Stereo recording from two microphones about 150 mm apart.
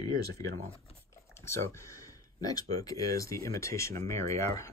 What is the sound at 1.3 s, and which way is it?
Speech, 20° left (ahead or behind).